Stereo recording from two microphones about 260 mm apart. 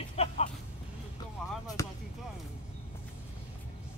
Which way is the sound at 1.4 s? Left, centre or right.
Centre.